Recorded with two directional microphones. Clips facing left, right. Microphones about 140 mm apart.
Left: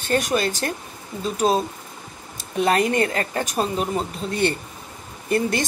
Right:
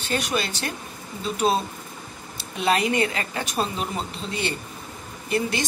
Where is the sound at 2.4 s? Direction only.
45° left (ahead or behind).